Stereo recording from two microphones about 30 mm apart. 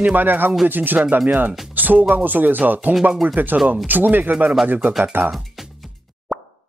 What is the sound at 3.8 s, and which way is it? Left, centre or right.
Speech, right.